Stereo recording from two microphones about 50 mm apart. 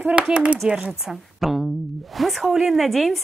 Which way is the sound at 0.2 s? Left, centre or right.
Right.